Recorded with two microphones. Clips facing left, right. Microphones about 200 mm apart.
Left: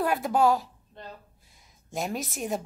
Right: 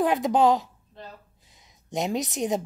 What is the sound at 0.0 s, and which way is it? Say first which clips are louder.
A woman's voice: right 3 dB; 20° right (ahead or behind).